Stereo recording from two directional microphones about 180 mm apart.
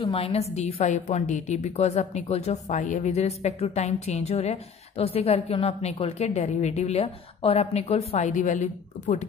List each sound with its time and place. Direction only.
0.0 s a woman's voice: 30° left (ahead or behind)